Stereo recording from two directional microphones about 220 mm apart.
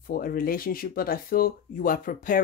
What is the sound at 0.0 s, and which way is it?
A woman's voice, 40° left (ahead or behind).